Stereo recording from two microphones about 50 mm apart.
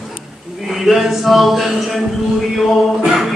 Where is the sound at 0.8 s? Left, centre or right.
Centre.